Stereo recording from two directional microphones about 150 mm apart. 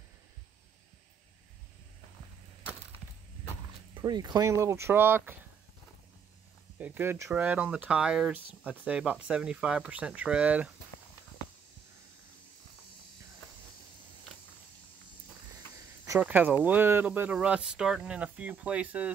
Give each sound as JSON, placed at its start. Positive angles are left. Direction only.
{"t": 4.0, "sound": "speech", "side_deg": -25}
{"t": 6.8, "sound": "speech", "side_deg": -15}
{"t": 16.2, "sound": "speech", "side_deg": -10}